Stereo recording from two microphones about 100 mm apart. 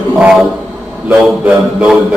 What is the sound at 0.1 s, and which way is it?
A man's voice, 15° right (ahead or behind).